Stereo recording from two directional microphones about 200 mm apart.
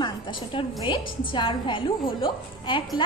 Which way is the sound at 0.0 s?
25° left (ahead or behind).